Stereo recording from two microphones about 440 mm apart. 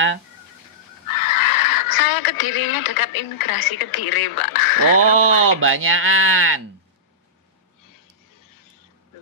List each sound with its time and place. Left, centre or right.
1.0 s speech: left
5.1 s speech: right